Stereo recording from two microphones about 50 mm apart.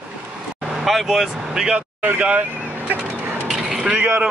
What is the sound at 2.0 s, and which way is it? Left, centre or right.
Speech, right.